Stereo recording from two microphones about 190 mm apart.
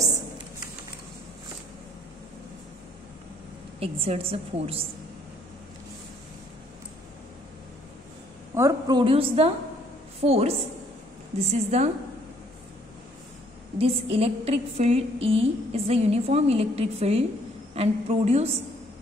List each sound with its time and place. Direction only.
3.8 s a woman's voice: 30° right (ahead or behind)
8.5 s a woman's voice: 20° right (ahead or behind); by 11.9 s 35° right (ahead or behind)
13.7 s a woman's voice: 30° right (ahead or behind)